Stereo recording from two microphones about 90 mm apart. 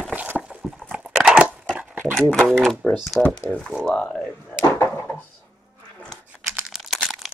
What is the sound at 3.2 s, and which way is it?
Speech, 10° left (ahead or behind).